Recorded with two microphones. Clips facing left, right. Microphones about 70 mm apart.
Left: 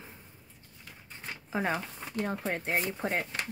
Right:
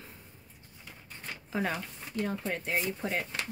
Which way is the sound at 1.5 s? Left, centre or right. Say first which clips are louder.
Left 2 dB; left.